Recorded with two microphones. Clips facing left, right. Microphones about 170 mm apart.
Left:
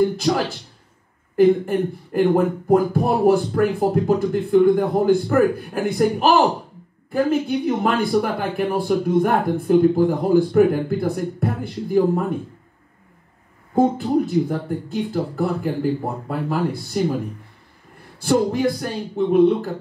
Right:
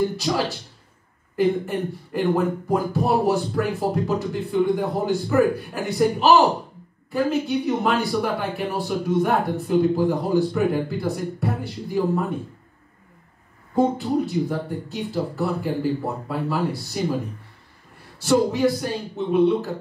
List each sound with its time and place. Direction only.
1.3 s speech: 50° left (ahead or behind)
13.7 s speech: 50° left (ahead or behind)
18.2 s speech: 50° left (ahead or behind)